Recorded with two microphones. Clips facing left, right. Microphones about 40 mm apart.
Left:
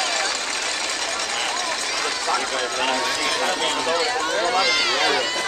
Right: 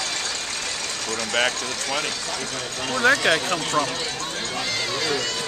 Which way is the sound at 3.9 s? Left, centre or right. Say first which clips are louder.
Left 7 dB; left.